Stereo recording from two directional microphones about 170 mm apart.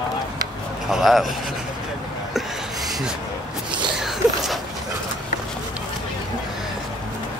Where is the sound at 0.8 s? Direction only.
Centre (ahead or behind).